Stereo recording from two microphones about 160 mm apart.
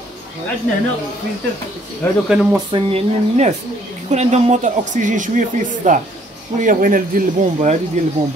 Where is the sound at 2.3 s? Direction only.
5° right (ahead or behind).